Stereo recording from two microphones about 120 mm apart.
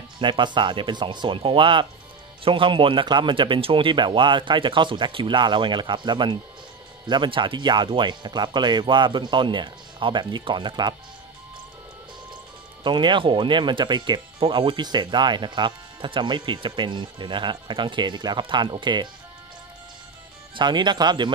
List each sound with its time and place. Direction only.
0.2 s speech: 40° right (ahead or behind)
12.8 s speech: 40° right (ahead or behind)
20.5 s speech: 40° right (ahead or behind)